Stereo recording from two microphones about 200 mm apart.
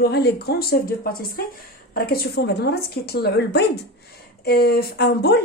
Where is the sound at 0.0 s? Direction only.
55° left (ahead or behind).